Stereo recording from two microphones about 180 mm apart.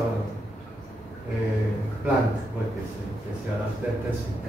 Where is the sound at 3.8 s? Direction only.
5° right (ahead or behind).